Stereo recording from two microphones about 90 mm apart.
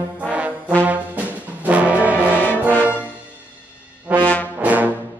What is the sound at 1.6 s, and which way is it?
Music, 15° right (ahead or behind).